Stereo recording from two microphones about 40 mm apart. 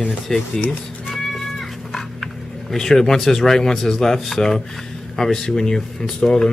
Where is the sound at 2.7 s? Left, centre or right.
Centre.